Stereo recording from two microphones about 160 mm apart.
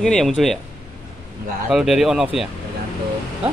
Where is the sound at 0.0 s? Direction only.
5° left (ahead or behind).